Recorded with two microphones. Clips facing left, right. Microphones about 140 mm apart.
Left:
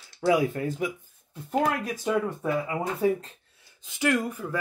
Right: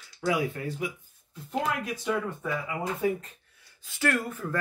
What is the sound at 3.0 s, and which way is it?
Speech, 30° left (ahead or behind).